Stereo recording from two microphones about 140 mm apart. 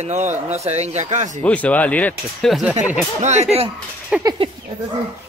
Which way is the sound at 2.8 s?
5° right (ahead or behind).